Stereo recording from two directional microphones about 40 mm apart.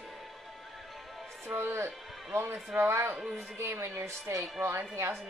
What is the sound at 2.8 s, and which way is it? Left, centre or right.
Speech, right.